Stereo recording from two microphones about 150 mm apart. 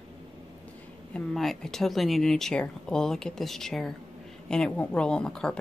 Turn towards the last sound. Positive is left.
turn(degrees=5)  # may be behind; listen again after turning